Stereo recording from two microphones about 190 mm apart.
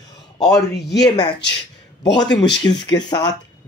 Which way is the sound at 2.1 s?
20° left (ahead or behind).